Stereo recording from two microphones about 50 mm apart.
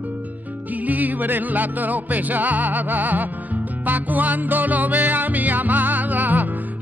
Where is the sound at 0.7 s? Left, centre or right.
Right.